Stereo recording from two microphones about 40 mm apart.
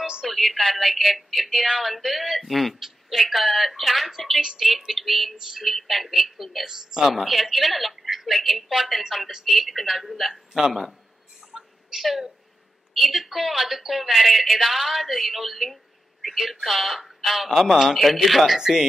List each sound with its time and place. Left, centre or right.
0.0 s music: right
0.3 s a woman's voice: centre
7.2 s speech: centre
11.5 s a sound: centre
12.9 s speech: centre
17.5 s speech: centre
18.6 s a woman's voice: centre